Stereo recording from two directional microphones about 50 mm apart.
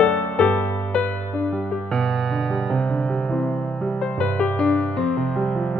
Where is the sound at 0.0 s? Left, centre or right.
Centre.